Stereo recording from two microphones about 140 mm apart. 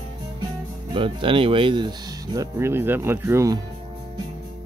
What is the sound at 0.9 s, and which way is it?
Speech, 40° right (ahead or behind).